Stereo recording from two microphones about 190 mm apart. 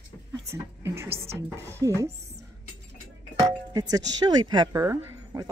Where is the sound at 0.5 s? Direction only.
15° right (ahead or behind).